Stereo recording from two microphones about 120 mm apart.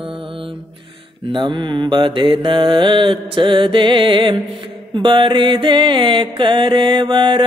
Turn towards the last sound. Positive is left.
turn(degrees=-40)  # may be behind; listen again after turning